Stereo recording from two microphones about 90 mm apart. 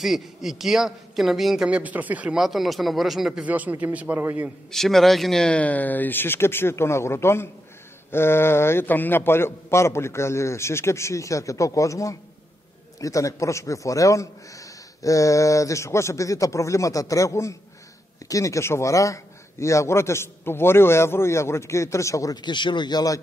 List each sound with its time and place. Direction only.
0.0 s a woman's voice: 5° right (ahead or behind)
1.7 s a man's voice: 15° right (ahead or behind)
2.3 s a woman's voice: centre (ahead or behind)
3.4 s a man's voice: 15° right (ahead or behind)
4.6 s a man's voice: 5° left (ahead or behind); by 22.4 s 40° left (ahead or behind)
22.4 s speech: 60° left (ahead or behind)